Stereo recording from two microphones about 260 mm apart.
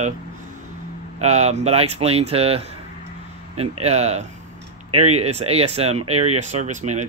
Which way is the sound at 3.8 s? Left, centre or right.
Right.